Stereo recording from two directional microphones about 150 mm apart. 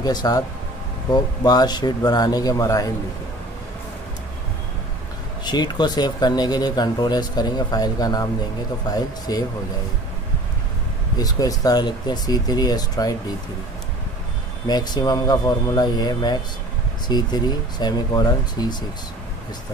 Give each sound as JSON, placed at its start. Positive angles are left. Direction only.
{"t": 0.0, "sound": "speech", "side_deg": 25}
{"t": 5.4, "sound": "speech", "side_deg": 30}
{"t": 11.1, "sound": "speech", "side_deg": 25}
{"t": 14.7, "sound": "speech", "side_deg": 25}